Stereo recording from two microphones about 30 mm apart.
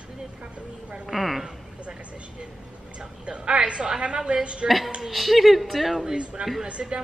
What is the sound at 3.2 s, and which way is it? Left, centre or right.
Speech, right.